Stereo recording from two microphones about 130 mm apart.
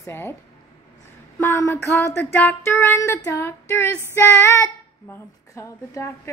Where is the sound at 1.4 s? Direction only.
20° left (ahead or behind).